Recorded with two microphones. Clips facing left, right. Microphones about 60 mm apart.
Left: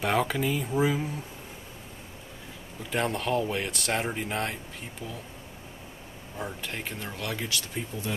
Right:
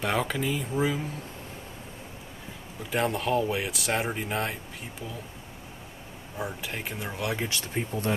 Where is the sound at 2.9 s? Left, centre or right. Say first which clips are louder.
Right 1 dB; centre.